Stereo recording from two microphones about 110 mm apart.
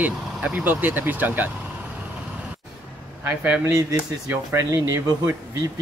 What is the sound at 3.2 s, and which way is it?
Speech, 15° right (ahead or behind).